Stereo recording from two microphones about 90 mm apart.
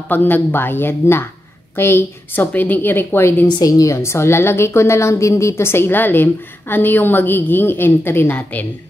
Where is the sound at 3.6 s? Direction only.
35° left (ahead or behind).